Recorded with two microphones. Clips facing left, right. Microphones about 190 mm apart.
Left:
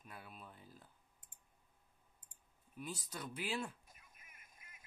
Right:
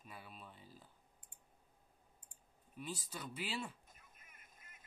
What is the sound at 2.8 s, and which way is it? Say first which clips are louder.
Speech: even; centre (ahead or behind).